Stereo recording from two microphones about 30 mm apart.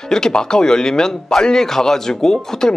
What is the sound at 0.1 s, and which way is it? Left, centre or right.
A man's voice, left.